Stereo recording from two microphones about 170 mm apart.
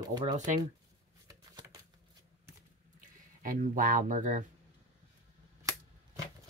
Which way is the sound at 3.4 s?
55° right (ahead or behind).